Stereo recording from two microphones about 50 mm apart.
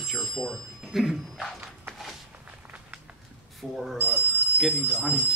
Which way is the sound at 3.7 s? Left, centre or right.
Centre.